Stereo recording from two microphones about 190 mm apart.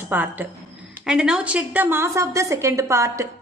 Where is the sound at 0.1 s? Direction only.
10° right (ahead or behind).